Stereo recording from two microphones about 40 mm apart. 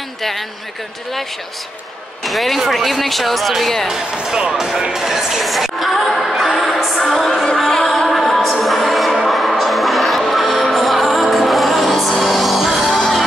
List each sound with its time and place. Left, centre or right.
2.2 s speech: centre
3.8 s speech: centre
8.1 s music: centre